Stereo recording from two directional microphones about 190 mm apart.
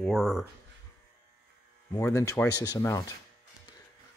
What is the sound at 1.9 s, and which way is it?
A man's voice, 15° left (ahead or behind).